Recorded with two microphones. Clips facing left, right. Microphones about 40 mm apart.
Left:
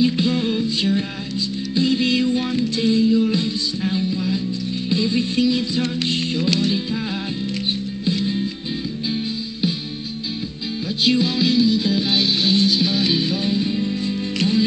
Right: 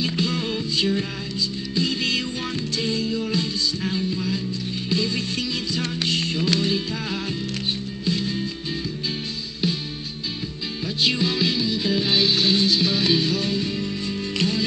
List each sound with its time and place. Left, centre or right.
0.0 s music: left
8.0 s music: left
11.1 s music: centre
13.3 s music: centre